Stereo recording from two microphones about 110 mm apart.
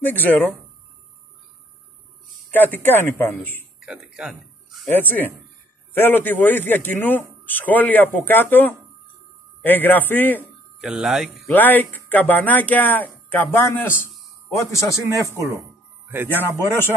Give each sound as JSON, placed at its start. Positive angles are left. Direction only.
{"t": 0.0, "sound": "speech", "side_deg": 15}
{"t": 2.5, "sound": "speech", "side_deg": 15}
{"t": 3.8, "sound": "speech", "side_deg": -5}
{"t": 4.9, "sound": "speech", "side_deg": 15}
{"t": 10.8, "sound": "speech", "side_deg": -5}
{"t": 11.4, "sound": "speech", "side_deg": 15}
{"t": 16.1, "sound": "speech", "side_deg": -20}
{"t": 16.3, "sound": "speech", "side_deg": 20}